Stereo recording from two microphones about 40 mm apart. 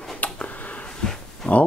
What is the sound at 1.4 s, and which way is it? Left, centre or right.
Speech, centre.